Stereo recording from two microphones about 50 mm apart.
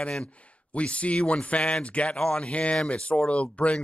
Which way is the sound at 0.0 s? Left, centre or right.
Centre.